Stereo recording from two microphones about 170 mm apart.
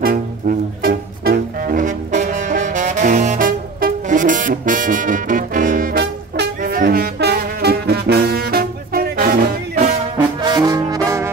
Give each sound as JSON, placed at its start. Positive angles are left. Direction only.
{"t": 0.0, "sound": "music", "side_deg": -60}
{"t": 6.6, "sound": "brass instrument", "side_deg": -55}
{"t": 10.4, "sound": "brass instrument", "side_deg": -25}